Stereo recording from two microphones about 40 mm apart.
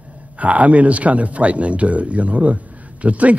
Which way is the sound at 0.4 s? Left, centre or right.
Right.